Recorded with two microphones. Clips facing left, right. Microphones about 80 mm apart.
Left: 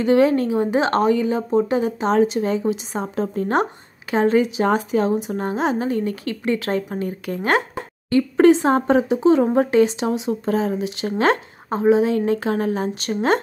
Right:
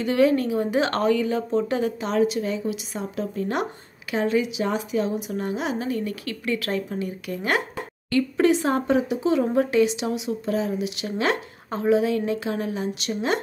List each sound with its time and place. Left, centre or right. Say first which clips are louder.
0.0 s a woman's voice: left 4 dB; left
11.7 s a woman's voice: left 4 dB; left